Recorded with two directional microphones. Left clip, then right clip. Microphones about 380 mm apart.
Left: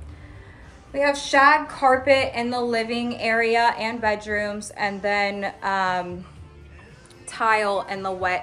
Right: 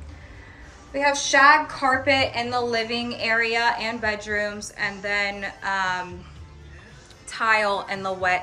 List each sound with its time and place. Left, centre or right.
0.9 s a woman's voice: centre
7.2 s a woman's voice: centre